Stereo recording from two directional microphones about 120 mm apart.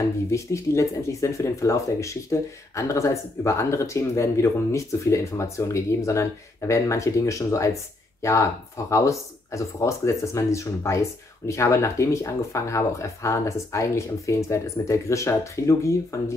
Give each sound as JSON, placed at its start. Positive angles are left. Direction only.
{"t": 0.3, "sound": "speech", "side_deg": 25}